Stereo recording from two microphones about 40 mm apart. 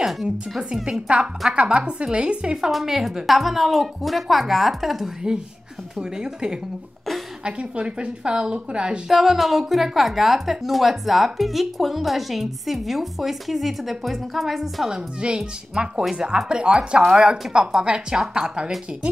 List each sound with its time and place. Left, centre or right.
0.0 s speech: centre
1.0 s a woman's voice: right
2.7 s a woman's voice: centre
5.9 s a woman's voice: centre
9.1 s a woman's voice: centre
14.9 s a woman's voice: right